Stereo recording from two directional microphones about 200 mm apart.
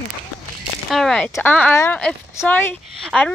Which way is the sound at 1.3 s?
10° left (ahead or behind).